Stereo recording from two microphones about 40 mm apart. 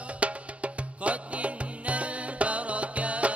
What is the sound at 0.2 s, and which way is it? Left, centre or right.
Music, right.